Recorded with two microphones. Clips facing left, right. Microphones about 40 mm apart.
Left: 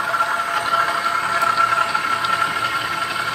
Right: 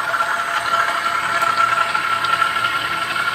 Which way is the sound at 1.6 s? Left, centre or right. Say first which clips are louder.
Right 1 dB; right.